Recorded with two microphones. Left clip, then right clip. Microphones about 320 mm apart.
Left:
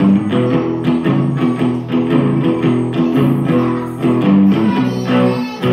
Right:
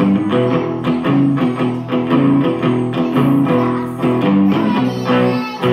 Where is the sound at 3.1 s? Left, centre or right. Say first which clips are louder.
Right 3 dB; centre.